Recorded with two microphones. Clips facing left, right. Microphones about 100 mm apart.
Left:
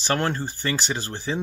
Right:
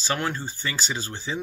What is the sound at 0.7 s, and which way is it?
Speech, 15° left (ahead or behind).